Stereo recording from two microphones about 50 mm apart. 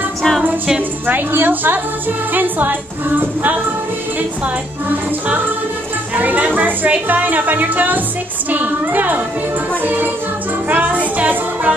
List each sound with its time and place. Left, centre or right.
0.7 s speech: right
6.1 s speech: right